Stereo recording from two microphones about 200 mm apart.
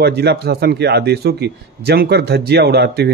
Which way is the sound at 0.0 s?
55° right (ahead or behind).